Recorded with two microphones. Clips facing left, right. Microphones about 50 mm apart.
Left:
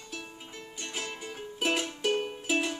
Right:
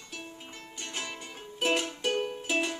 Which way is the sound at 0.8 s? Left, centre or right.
Centre.